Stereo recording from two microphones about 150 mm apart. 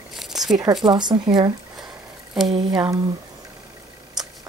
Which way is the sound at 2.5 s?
25° right (ahead or behind).